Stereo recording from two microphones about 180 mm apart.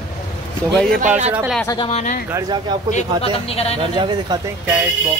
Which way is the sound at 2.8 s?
35° left (ahead or behind).